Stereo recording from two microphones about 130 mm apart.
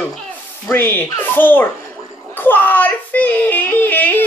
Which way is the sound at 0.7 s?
15° left (ahead or behind).